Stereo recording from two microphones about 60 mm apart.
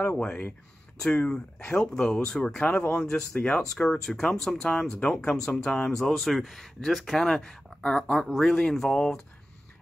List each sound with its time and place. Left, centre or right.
1.0 s a man's voice: centre